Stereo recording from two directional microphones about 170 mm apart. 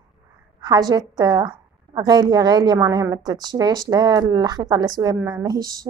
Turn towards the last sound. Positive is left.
turn(degrees=-25)  # may be behind; listen again after turning